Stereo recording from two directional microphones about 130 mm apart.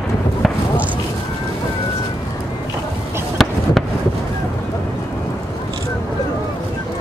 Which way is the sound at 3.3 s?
Centre (ahead or behind).